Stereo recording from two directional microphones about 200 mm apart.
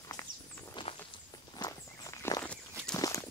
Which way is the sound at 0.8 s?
25° left (ahead or behind).